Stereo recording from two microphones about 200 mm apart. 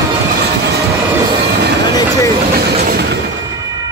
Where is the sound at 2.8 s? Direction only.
50° right (ahead or behind).